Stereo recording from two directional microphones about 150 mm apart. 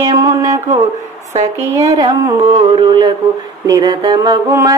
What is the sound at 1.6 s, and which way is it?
Mantra, 20° right (ahead or behind).